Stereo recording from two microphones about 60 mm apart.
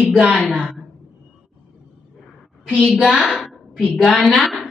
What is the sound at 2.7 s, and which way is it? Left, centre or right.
Speech, centre.